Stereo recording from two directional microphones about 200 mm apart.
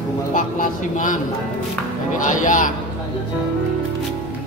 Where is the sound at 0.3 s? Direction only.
40° left (ahead or behind).